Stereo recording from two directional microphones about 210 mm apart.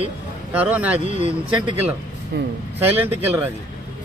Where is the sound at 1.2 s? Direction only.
25° right (ahead or behind).